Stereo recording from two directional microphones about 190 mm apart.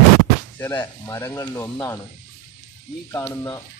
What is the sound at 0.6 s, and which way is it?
Speech, 10° left (ahead or behind).